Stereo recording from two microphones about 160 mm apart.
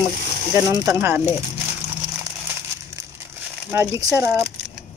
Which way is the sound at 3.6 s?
15° right (ahead or behind).